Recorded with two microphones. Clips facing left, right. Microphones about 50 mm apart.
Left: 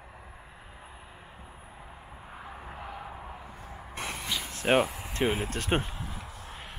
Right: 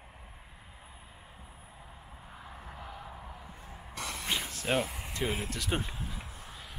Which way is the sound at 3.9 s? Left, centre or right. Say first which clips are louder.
Even; left.